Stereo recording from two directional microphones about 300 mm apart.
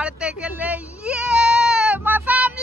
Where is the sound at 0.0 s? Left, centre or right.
Centre.